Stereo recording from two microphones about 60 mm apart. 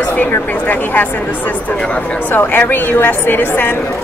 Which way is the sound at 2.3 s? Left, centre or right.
Left.